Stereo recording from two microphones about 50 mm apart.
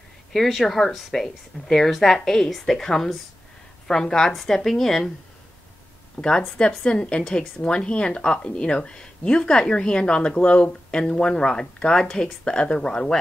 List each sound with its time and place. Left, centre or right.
0.3 s a woman's voice: centre
6.2 s a woman's voice: centre